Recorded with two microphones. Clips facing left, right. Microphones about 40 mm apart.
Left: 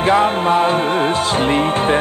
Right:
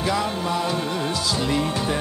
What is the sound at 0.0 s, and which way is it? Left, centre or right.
Music, left.